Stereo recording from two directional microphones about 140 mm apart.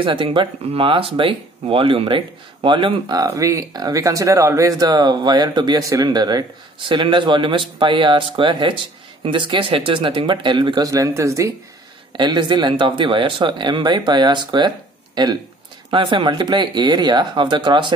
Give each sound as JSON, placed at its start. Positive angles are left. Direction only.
{"t": 0.0, "sound": "speech", "side_deg": -35}